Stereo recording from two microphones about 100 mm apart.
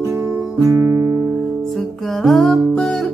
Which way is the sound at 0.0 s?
25° right (ahead or behind).